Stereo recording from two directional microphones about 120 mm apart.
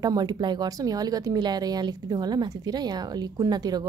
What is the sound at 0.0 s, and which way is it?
Speech, 35° right (ahead or behind).